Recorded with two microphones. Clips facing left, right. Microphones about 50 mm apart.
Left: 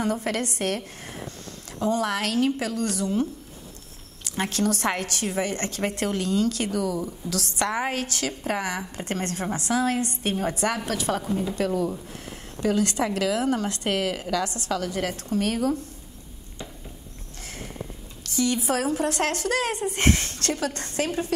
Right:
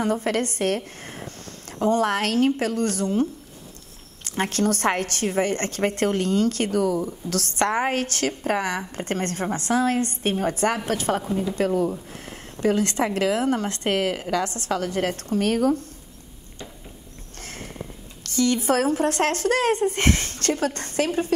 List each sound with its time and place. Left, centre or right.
0.0 s a woman's voice: right
18.2 s a woman's voice: right